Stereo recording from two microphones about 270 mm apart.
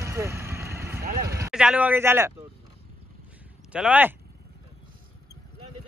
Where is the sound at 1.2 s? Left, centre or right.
Centre.